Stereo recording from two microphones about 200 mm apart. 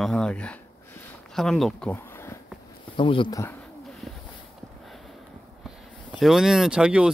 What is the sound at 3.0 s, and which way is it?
Speech, 25° left (ahead or behind).